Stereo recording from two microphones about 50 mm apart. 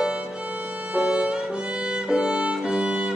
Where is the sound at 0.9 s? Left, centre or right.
Centre.